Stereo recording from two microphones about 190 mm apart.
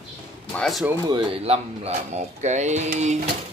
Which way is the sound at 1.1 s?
25° right (ahead or behind).